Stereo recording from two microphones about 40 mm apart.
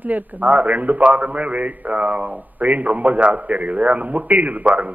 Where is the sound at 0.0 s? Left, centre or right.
Right.